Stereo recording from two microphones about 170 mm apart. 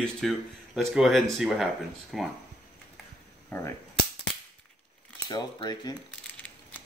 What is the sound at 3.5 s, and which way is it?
Cap gun, 15° left (ahead or behind).